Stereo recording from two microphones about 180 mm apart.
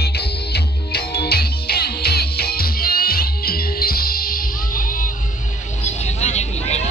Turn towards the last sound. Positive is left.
turn(degrees=40)  # may be behind; listen again after turning